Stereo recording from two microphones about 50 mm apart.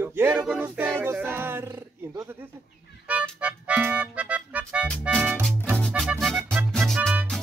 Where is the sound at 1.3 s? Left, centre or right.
Right.